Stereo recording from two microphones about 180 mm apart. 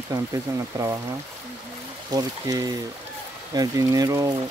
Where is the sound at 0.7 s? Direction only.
15° right (ahead or behind).